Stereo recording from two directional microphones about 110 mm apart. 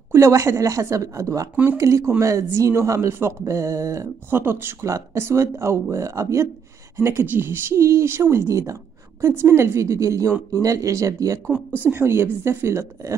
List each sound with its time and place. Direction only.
0.1 s speech: 25° right (ahead or behind)
11.5 s speech: 15° right (ahead or behind)